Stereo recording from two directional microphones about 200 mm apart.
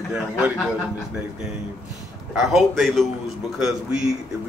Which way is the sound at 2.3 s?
Centre (ahead or behind).